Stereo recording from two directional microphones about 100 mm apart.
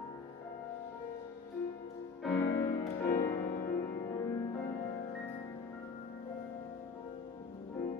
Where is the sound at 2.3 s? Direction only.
25° left (ahead or behind).